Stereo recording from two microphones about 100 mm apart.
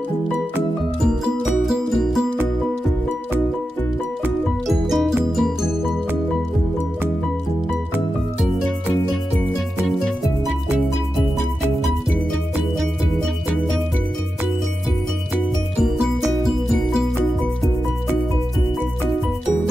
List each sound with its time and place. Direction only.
1.0 s music: 5° right (ahead or behind)
4.6 s music: centre (ahead or behind)